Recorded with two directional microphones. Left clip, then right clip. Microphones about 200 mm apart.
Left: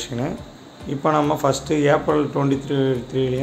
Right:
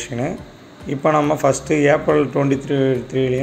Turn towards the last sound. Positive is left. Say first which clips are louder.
# right 3 dB
turn(degrees=0)  # may be behind; listen again after turning